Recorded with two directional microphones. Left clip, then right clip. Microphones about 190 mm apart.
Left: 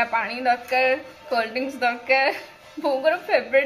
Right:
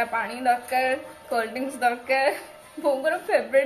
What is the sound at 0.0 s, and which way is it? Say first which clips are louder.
A woman's voice: left 2 dB; 20° left (ahead or behind).